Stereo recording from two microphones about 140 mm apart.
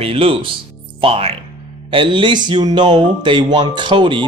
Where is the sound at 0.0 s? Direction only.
40° right (ahead or behind).